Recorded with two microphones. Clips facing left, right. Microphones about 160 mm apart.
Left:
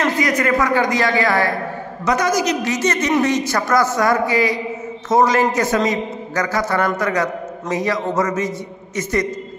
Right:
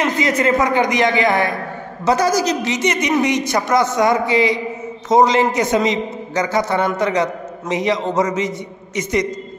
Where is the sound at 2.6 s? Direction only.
20° right (ahead or behind).